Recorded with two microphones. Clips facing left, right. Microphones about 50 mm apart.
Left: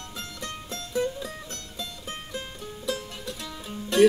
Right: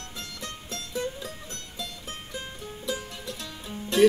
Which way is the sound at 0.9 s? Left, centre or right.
Centre.